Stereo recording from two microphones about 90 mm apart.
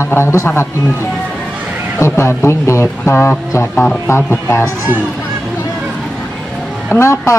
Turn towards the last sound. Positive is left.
turn(degrees=30)  # may be behind; listen again after turning